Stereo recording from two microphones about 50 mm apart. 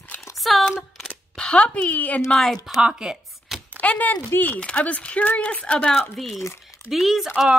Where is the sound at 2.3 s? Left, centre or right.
Centre.